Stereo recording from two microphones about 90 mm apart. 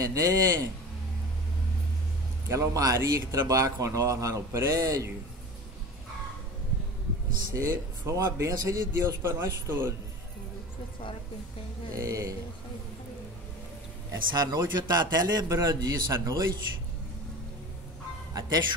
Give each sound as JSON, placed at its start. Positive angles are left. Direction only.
{"t": 0.0, "sound": "speech", "side_deg": -35}
{"t": 2.4, "sound": "speech", "side_deg": -35}
{"t": 7.5, "sound": "speech", "side_deg": -35}
{"t": 11.9, "sound": "speech", "side_deg": -35}
{"t": 14.1, "sound": "a man's voice", "side_deg": -50}
{"t": 18.3, "sound": "speech", "side_deg": -55}